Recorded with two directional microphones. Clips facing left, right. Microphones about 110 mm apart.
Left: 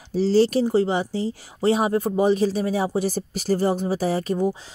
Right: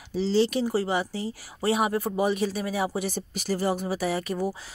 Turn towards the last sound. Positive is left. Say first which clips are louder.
# left 5 dB
turn(degrees=25)  # may be behind; listen again after turning